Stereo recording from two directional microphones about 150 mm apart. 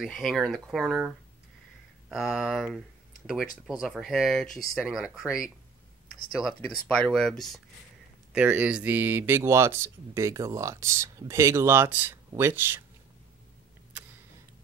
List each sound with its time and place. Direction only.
0.0 s speech: centre (ahead or behind)
2.0 s speech: centre (ahead or behind)
3.8 s speech: centre (ahead or behind)
6.4 s speech: 5° left (ahead or behind)
8.3 s speech: 10° right (ahead or behind)